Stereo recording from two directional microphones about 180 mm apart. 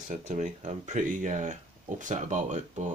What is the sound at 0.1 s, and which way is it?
Speech, 45° right (ahead or behind).